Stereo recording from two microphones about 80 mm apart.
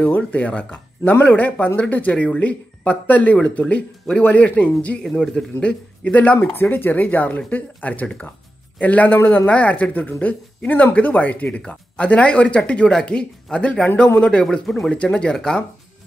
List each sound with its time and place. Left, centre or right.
0.0 s speech: centre